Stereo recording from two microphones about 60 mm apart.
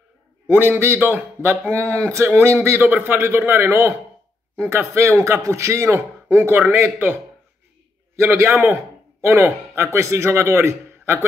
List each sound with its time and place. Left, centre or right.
0.5 s a man's voice: right
5.9 s speech: right
8.2 s a man's voice: right
9.9 s a man's voice: right